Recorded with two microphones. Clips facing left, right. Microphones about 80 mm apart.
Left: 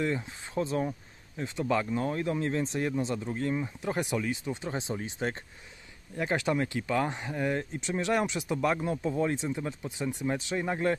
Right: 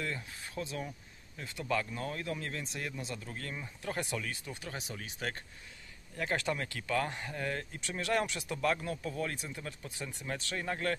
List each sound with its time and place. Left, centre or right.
0.0 s speech: left